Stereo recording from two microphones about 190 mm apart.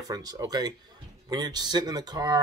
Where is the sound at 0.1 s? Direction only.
20° right (ahead or behind).